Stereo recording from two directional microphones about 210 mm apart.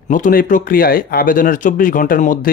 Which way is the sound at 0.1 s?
40° left (ahead or behind).